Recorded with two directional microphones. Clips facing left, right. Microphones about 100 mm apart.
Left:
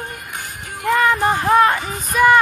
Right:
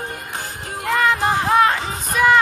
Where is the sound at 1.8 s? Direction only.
30° right (ahead or behind).